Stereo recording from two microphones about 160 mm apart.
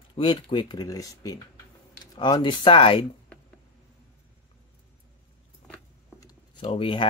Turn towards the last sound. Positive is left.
turn(degrees=35)  # may be behind; listen again after turning